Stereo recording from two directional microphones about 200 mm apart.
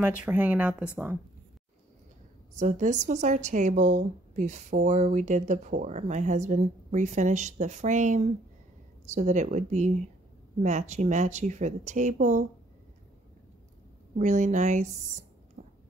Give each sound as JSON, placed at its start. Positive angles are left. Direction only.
{"t": 0.0, "sound": "speech", "side_deg": -5}
{"t": 2.6, "sound": "speech", "side_deg": -35}
{"t": 14.1, "sound": "speech", "side_deg": -40}
{"t": 15.6, "sound": "a sound", "side_deg": -35}